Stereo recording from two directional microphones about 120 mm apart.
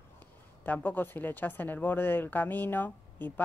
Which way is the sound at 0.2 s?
15° left (ahead or behind).